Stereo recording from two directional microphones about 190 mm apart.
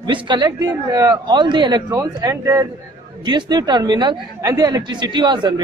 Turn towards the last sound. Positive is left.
turn(degrees=-25)  # may be behind; listen again after turning